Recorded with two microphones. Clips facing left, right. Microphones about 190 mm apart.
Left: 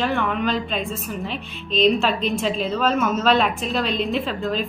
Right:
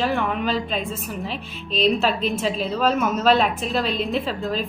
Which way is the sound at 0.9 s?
40° right (ahead or behind).